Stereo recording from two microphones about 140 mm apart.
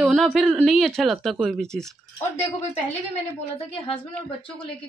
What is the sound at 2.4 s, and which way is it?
Speech, 50° left (ahead or behind).